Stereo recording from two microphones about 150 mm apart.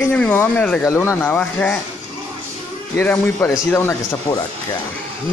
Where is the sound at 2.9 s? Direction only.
10° left (ahead or behind).